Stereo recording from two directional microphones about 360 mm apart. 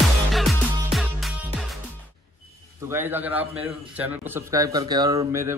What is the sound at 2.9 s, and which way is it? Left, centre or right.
A man's voice, centre.